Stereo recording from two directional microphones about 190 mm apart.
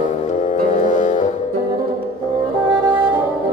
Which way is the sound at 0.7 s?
40° left (ahead or behind).